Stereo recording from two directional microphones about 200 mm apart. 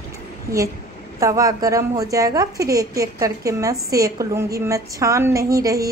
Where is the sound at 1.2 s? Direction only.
15° right (ahead or behind).